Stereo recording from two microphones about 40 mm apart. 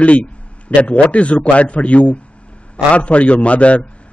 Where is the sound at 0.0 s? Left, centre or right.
Left.